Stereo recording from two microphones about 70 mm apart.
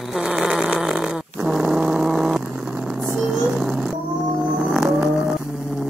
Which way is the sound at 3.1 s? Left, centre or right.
Centre.